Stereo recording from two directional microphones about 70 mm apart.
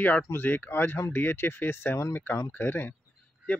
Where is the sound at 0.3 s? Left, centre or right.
Left.